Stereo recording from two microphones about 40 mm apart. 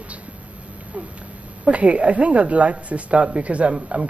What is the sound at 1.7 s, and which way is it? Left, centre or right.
Speech, right.